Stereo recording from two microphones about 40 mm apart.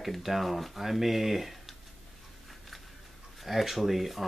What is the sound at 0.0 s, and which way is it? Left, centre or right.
Speech, centre.